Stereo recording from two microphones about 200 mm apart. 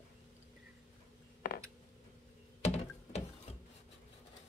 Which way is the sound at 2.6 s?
30° left (ahead or behind).